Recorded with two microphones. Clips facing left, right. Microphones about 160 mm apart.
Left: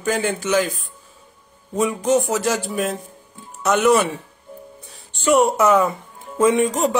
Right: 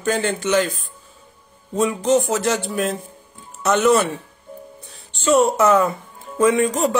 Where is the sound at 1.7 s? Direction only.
10° left (ahead or behind).